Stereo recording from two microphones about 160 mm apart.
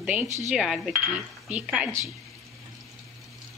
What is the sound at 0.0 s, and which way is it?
Stir, 10° right (ahead or behind).